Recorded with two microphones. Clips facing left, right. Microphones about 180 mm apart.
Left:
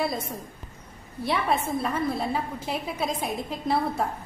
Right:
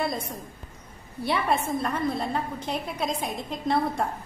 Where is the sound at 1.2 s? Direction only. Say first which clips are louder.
Even; centre (ahead or behind).